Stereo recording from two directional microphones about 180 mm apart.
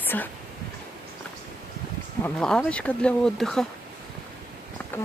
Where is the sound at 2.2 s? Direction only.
5° left (ahead or behind).